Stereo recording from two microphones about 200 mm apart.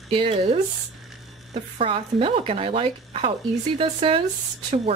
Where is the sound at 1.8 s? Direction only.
25° right (ahead or behind).